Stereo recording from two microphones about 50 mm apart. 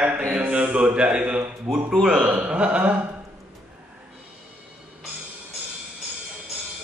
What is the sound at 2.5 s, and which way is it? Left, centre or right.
Speech, right.